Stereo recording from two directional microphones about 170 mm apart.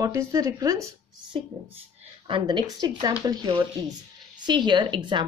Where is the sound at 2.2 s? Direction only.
30° right (ahead or behind).